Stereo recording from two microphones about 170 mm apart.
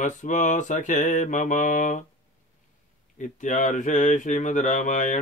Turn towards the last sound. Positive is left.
turn(degrees=50)  # may be behind; listen again after turning